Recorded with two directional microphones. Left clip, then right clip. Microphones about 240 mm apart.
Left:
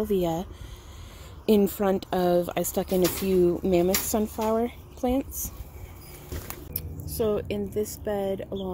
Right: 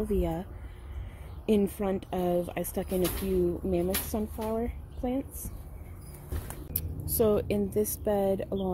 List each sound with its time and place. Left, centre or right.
0.1 s speech: centre
6.7 s speech: centre